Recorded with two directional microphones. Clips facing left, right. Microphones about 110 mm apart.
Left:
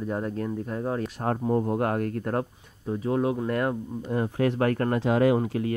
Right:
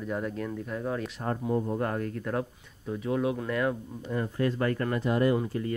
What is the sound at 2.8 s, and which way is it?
Speech, 35° left (ahead or behind).